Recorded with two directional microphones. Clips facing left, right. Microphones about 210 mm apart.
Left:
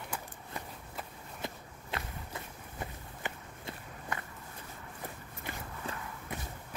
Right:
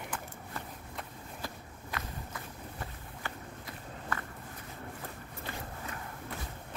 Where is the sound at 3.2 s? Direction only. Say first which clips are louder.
Left 1 dB; 20° left (ahead or behind).